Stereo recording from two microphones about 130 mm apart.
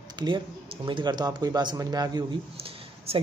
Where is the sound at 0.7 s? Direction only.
40° right (ahead or behind).